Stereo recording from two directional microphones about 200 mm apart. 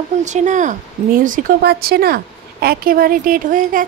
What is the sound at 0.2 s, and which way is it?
Speech, 35° right (ahead or behind).